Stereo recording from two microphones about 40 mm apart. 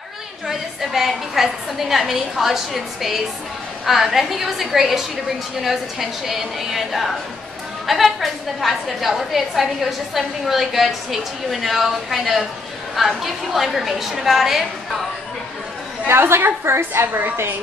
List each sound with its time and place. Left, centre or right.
0.5 s a woman's voice: centre
16.1 s a woman's voice: right